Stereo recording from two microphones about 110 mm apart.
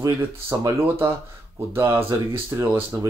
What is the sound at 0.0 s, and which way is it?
Speech, 30° right (ahead or behind).